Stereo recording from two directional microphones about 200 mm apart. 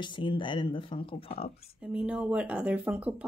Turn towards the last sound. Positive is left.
turn(degrees=-5)  # may be behind; listen again after turning